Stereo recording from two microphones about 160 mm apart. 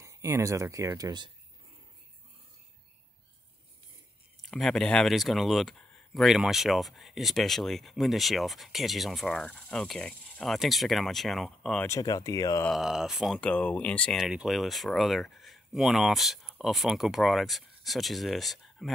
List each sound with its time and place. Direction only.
0.0 s speech: 20° right (ahead or behind)
4.4 s speech: centre (ahead or behind)
11.9 s speech: 20° left (ahead or behind)
12.6 s speech: centre (ahead or behind)